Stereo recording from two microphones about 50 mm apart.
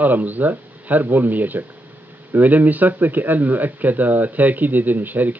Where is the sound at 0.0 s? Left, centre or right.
Right.